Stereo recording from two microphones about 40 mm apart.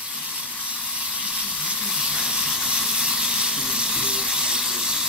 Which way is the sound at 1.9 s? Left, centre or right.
Right.